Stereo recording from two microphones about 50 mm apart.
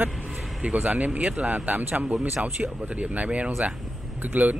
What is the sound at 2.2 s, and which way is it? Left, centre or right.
Speech, centre.